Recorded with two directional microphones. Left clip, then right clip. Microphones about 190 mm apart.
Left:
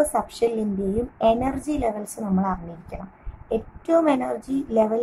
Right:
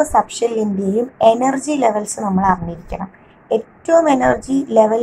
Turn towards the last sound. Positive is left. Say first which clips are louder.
# right 8 dB
turn(degrees=-10)  # may be behind; listen again after turning